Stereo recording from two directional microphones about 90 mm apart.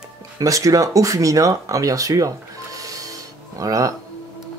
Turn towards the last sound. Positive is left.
turn(degrees=-40)  # may be behind; listen again after turning